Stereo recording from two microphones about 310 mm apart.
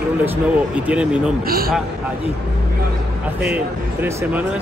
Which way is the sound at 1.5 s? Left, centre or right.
Right.